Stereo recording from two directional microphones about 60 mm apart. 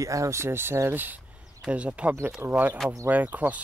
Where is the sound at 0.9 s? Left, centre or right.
Right.